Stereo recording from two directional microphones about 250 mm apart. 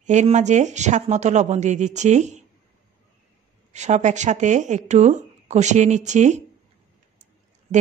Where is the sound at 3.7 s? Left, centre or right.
Right.